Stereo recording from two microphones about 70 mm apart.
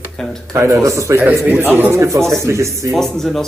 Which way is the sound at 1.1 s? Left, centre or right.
Right.